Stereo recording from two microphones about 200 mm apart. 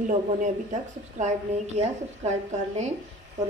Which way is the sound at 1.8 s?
35° right (ahead or behind).